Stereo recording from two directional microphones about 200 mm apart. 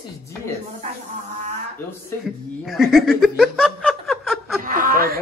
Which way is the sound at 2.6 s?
Centre (ahead or behind).